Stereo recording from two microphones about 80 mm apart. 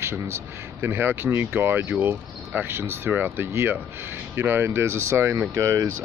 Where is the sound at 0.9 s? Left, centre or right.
Right.